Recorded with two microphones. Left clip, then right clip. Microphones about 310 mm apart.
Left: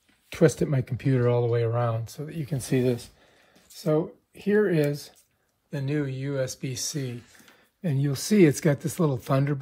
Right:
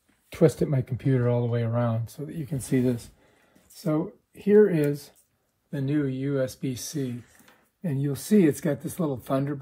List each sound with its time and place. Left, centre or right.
0.3 s speech: left